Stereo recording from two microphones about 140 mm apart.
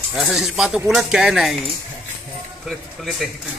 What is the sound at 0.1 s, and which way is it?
Speech, centre (ahead or behind).